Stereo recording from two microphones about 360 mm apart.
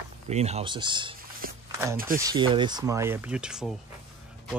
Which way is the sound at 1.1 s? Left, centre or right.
Right.